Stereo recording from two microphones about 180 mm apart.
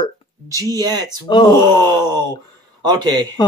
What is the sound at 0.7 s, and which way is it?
Speech, 20° right (ahead or behind).